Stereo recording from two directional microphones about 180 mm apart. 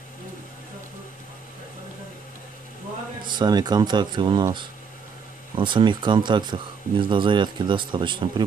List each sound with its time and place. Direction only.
3.3 s speech: 25° right (ahead or behind)